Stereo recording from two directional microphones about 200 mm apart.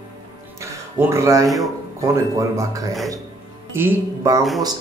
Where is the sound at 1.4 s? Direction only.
Centre (ahead or behind).